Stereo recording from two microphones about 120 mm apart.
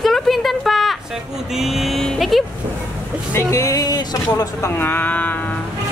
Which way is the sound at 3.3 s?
25° left (ahead or behind).